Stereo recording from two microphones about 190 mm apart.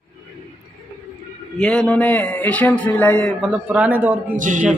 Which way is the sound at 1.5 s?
5° left (ahead or behind).